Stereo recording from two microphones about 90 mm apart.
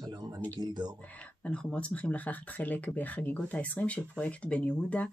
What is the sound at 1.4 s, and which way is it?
Speech, 10° left (ahead or behind).